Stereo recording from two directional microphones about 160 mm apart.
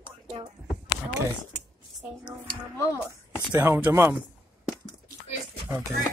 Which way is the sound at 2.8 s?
20° left (ahead or behind).